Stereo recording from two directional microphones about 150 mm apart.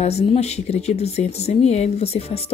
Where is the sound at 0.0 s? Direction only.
45° left (ahead or behind).